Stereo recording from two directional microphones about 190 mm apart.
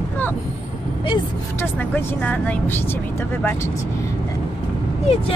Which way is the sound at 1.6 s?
10° left (ahead or behind).